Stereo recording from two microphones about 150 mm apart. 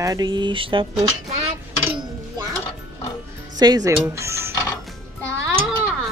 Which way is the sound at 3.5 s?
25° right (ahead or behind).